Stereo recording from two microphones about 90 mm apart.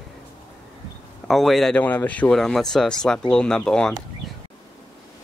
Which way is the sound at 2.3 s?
5° left (ahead or behind).